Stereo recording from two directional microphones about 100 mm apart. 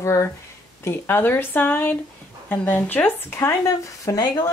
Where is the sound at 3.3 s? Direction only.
30° left (ahead or behind).